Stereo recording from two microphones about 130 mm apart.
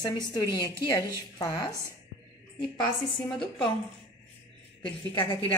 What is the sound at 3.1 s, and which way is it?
Speech, centre (ahead or behind).